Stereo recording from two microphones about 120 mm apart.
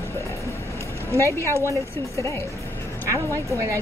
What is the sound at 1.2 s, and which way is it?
Speech, 20° left (ahead or behind).